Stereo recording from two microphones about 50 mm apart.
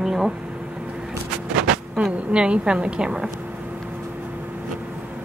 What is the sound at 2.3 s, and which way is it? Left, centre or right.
A woman's voice, right.